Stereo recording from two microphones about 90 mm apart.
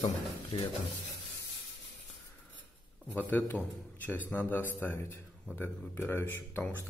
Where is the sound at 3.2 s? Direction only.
20° left (ahead or behind).